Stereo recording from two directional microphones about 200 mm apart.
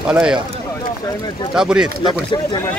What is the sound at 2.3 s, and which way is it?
Speech, 20° left (ahead or behind).